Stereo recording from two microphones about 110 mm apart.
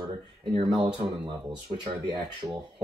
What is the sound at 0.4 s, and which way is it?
Speech, 50° right (ahead or behind).